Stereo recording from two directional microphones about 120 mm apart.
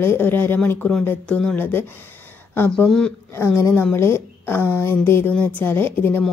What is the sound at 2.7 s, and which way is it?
Speech, 5° left (ahead or behind).